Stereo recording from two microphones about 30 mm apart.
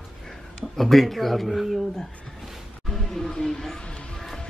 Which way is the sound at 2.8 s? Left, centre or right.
Centre.